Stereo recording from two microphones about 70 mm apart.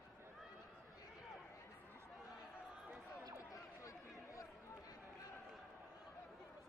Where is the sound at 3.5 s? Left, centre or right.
Left.